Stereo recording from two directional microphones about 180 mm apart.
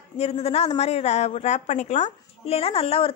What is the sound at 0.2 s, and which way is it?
A woman's voice, 35° left (ahead or behind).